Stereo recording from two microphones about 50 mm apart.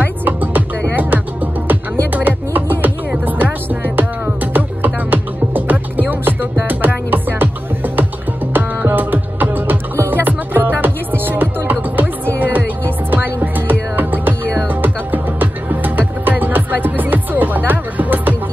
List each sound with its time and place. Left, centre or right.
0.0 s music: right